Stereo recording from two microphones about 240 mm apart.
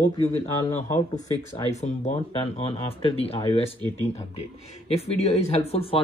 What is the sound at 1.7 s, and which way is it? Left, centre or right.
Speech, left.